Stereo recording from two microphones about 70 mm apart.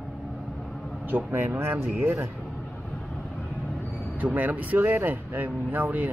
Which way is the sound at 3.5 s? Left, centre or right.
Left.